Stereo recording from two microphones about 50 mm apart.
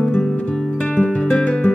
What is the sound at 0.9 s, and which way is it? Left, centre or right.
Music, left.